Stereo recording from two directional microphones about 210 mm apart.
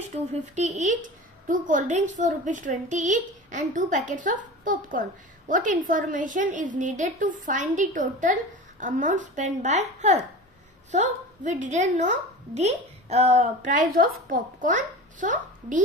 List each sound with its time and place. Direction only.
0.3 s a woman's voice: 35° right (ahead or behind)